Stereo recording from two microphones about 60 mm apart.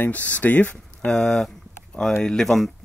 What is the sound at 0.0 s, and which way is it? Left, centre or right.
Speech, left.